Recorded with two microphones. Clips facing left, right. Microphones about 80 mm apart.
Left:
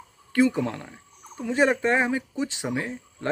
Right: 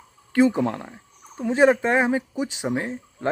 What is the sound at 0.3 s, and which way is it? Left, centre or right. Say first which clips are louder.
Speech: right 3 dB; right.